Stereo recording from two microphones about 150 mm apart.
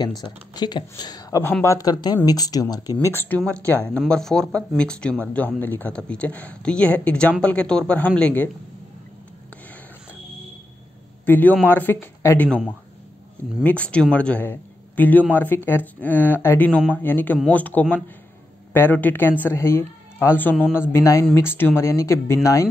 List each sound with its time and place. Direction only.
0.2 s speech: 30° left (ahead or behind)
1.4 s speech: 15° left (ahead or behind)
11.2 s speech: 10° left (ahead or behind)
13.6 s a man's voice: 10° left (ahead or behind)